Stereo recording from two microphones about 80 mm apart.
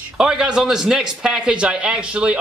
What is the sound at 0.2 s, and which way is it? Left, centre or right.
A man's voice, centre.